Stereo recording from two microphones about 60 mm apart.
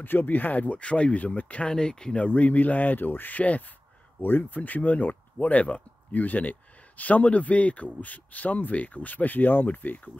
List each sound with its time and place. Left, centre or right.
0.0 s speech: left
1.7 s speech: centre
2.2 s speech: left